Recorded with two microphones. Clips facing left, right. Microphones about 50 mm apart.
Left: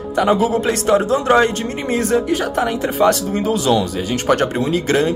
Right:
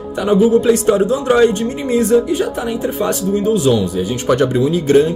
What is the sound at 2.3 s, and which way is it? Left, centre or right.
Speech, left.